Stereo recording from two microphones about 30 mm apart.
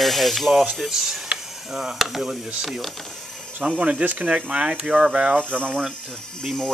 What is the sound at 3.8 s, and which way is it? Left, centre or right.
Speech, right.